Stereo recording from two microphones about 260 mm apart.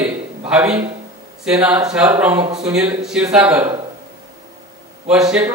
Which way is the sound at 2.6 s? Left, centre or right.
Centre.